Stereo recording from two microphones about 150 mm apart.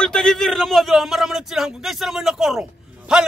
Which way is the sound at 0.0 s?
5° left (ahead or behind).